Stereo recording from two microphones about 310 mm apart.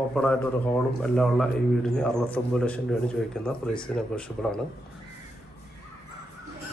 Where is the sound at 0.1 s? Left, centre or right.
Centre.